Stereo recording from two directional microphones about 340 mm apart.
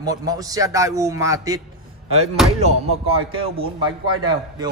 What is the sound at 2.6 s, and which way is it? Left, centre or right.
A man's voice, centre.